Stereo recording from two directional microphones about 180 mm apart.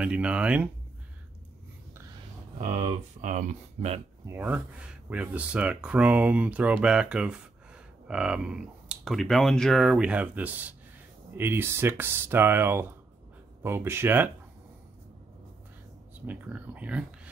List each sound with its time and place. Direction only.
0.0 s speech: 5° right (ahead or behind)
2.6 s speech: 40° right (ahead or behind)
4.3 s speech: 10° right (ahead or behind)
16.3 s speech: 10° right (ahead or behind)